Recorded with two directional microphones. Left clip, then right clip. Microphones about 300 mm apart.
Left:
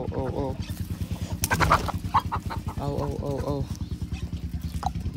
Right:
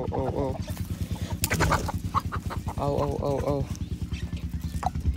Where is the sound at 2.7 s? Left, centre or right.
Centre.